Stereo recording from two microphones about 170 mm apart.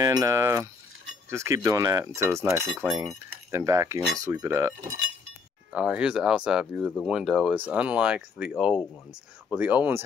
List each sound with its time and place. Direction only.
0.0 s cutlery: 20° right (ahead or behind)
3.5 s cutlery: 20° right (ahead or behind)
5.7 s speech: 5° right (ahead or behind)
9.5 s cutlery: 10° right (ahead or behind)